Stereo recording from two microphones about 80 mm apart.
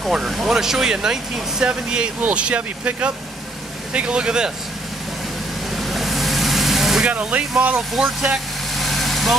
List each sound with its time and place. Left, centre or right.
0.0 s speech: centre
5.8 s vehicle: centre
7.1 s speech: centre
8.7 s vehicle: centre